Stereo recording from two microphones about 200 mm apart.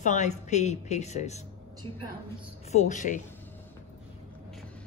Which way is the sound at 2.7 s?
35° left (ahead or behind).